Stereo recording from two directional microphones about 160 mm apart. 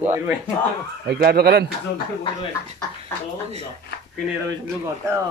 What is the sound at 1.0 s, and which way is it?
Speech, 85° right.